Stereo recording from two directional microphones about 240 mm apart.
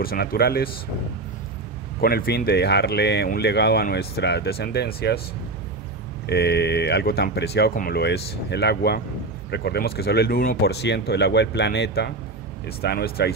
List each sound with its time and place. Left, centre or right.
0.0 s speech: left
2.0 s speech: left
6.2 s speech: left